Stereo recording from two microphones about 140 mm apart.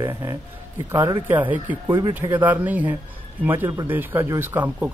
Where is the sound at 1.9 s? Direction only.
35° right (ahead or behind).